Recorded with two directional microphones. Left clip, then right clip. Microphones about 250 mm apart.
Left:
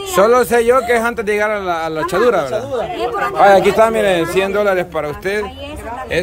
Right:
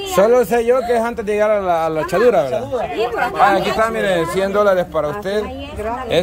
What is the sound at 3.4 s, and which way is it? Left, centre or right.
A man's voice, left.